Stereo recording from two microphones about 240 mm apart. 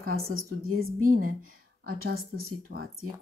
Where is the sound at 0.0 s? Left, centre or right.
Right.